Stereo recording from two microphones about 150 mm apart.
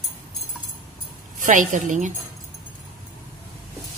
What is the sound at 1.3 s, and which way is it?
Speech, 60° right (ahead or behind).